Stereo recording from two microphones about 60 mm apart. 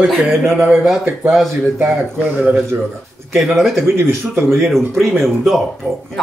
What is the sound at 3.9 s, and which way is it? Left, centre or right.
Speech, right.